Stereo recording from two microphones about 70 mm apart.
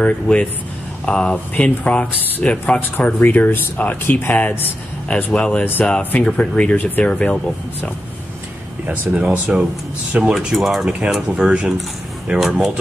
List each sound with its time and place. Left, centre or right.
0.0 s speech: centre
8.8 s speech: right
10.4 s speech: centre
10.9 s speech: centre